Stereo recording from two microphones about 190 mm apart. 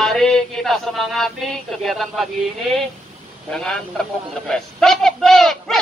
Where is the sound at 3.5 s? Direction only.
5° left (ahead or behind).